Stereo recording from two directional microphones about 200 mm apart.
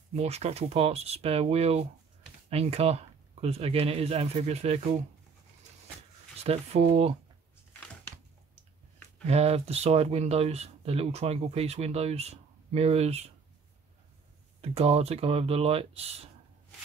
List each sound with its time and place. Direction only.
0.1 s speech: 30° right (ahead or behind)
6.4 s speech: 30° right (ahead or behind)
9.2 s speech: 30° right (ahead or behind)
14.6 s speech: 30° right (ahead or behind)